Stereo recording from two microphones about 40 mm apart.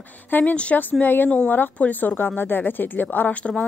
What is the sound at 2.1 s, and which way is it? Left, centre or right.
A woman's voice, left.